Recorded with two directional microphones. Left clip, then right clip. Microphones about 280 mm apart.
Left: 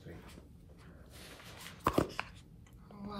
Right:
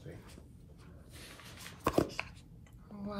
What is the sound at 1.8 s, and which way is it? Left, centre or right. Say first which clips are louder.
Chopping: even; centre.